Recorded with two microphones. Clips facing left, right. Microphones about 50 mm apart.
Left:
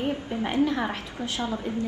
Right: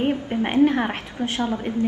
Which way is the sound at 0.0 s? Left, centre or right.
Right.